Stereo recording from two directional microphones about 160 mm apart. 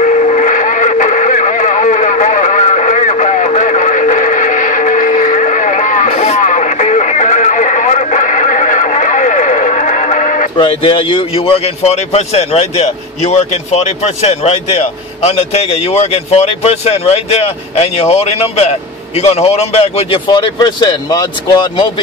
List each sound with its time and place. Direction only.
0.0 s radio: 50° left (ahead or behind)
10.5 s speech: 30° left (ahead or behind)
20.2 s speech: 25° left (ahead or behind)